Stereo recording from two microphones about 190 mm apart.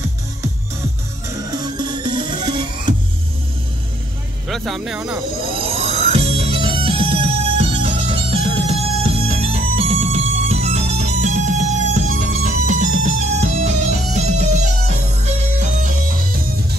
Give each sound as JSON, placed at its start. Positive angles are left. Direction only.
{"t": 1.6, "sound": "music", "side_deg": -25}
{"t": 4.5, "sound": "speech", "side_deg": 0}
{"t": 5.9, "sound": "music", "side_deg": -30}